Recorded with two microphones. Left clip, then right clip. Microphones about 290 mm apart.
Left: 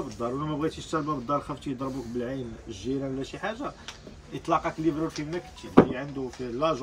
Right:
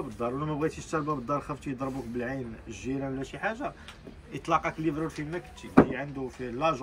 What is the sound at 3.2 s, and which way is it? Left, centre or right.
Speech, centre.